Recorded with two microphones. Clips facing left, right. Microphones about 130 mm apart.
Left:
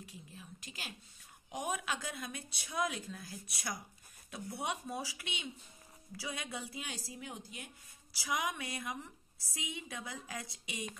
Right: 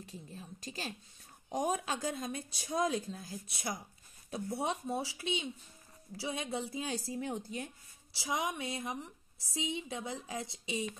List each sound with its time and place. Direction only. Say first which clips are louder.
0.0 s a woman's voice: right 4 dB; 40° right (ahead or behind)
7.1 s speech: right 9 dB; 45° right (ahead or behind)
8.2 s a woman's voice: right 2 dB; 25° right (ahead or behind)